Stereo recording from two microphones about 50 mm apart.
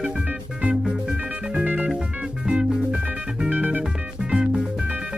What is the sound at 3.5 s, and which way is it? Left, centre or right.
Music, right.